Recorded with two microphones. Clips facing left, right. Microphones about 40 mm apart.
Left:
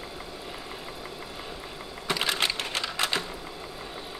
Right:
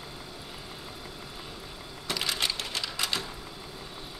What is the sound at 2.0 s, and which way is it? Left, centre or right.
Typewriter, left.